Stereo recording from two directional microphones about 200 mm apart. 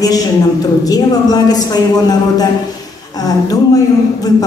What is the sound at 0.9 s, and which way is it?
A man's voice, 20° left (ahead or behind).